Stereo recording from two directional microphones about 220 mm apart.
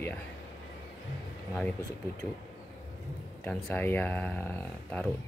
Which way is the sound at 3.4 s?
5° left (ahead or behind).